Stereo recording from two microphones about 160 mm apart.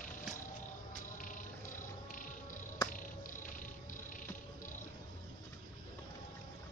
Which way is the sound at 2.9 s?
55° left (ahead or behind).